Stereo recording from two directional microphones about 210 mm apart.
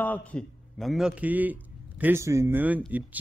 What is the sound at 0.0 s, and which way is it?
A man's voice, 5° left (ahead or behind).